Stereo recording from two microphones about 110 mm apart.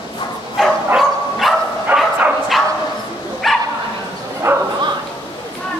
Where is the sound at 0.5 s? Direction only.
Centre (ahead or behind).